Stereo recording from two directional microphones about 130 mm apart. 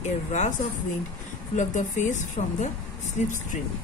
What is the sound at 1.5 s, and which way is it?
A woman's voice, 70° left (ahead or behind).